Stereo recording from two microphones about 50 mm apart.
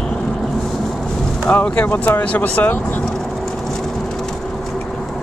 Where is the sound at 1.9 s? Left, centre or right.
Left.